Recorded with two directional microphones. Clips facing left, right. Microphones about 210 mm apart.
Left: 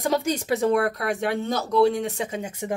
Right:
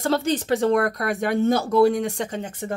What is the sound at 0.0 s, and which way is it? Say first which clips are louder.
A woman's voice: right 2 dB; 15° left (ahead or behind).